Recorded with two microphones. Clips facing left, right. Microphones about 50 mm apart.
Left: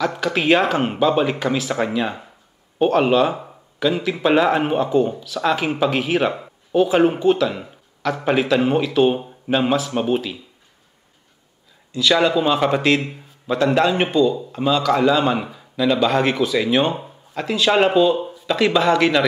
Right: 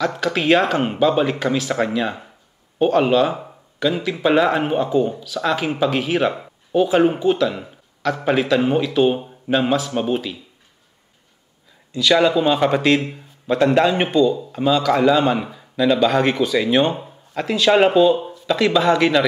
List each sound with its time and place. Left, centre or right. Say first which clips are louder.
0.0 s speech: even; centre
12.0 s speech: right 1 dB; centre
18.1 s speech: right 1 dB; centre